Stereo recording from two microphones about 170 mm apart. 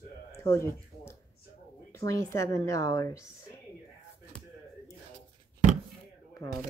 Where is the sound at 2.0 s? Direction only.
20° left (ahead or behind).